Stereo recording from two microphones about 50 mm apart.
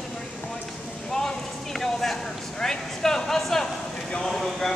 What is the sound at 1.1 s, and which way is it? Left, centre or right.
Clip-clop, centre.